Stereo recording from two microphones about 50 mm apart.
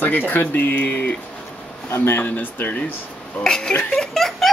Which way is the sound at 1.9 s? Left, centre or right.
Left.